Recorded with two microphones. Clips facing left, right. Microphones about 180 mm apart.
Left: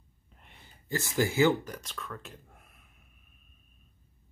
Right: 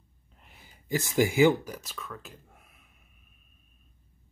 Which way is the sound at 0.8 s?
15° right (ahead or behind).